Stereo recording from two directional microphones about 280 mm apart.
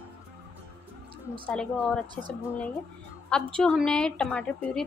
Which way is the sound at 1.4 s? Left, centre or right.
Centre.